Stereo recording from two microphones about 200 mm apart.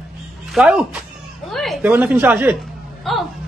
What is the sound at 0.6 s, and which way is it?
A woman's voice, 5° right (ahead or behind).